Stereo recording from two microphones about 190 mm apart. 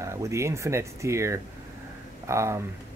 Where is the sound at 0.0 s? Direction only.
15° right (ahead or behind).